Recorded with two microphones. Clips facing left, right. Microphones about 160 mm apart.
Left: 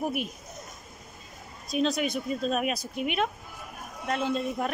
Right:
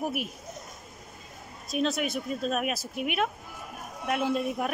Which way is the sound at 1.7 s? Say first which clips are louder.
Left 1 dB; centre (ahead or behind).